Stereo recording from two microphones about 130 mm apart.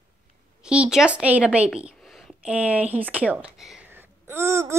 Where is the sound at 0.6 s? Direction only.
5° right (ahead or behind).